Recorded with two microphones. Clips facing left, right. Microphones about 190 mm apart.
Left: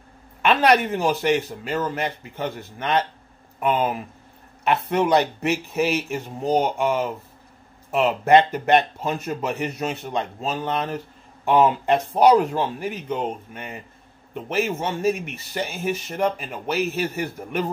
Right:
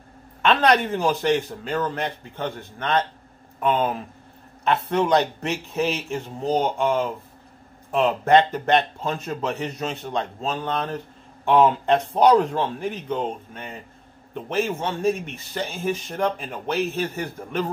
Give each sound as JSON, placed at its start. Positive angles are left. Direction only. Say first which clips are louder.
{"t": 0.4, "sound": "a man's voice", "louder": "left 1 dB", "side_deg": 10}